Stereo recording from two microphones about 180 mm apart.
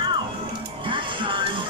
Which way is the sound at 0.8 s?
25° right (ahead or behind).